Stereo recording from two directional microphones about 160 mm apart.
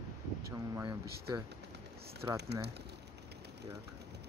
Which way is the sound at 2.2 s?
20° right (ahead or behind).